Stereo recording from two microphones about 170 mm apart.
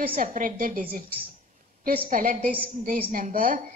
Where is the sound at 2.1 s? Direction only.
55° right (ahead or behind).